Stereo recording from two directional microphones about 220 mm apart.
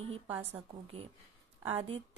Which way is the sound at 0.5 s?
25° right (ahead or behind).